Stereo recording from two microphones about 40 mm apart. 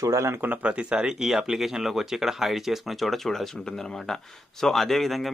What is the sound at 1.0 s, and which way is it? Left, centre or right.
Speech, centre.